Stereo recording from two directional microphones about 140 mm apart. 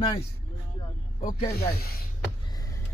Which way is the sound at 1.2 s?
90° left.